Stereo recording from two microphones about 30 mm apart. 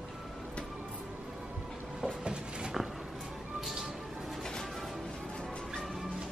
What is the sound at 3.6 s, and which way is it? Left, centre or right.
Music, centre.